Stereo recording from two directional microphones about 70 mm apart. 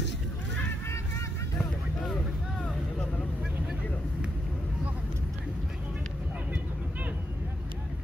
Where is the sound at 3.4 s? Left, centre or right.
Centre.